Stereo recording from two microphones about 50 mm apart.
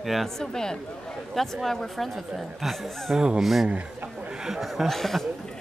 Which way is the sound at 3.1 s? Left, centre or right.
Centre.